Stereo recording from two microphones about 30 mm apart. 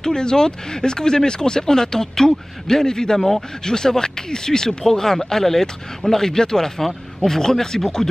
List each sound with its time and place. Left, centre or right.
0.0 s speech: left
3.2 s speech: centre
3.6 s speech: left